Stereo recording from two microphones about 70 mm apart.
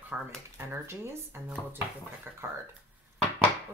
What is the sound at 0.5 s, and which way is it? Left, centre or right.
Speech, right.